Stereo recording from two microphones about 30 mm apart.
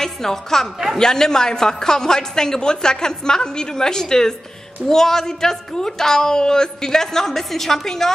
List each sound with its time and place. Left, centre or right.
0.0 s a woman's voice: centre